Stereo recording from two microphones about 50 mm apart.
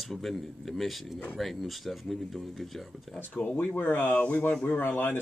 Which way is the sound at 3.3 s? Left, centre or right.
Left.